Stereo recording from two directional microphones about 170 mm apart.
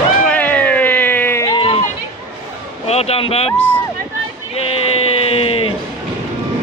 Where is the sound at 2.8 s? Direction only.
35° left (ahead or behind).